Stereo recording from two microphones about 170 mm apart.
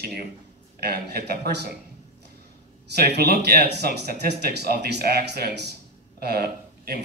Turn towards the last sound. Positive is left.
turn(degrees=-65)  # may be behind; listen again after turning